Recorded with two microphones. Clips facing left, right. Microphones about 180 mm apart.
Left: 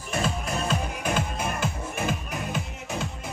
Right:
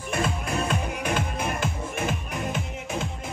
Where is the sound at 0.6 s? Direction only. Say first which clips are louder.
Even; 55° right (ahead or behind).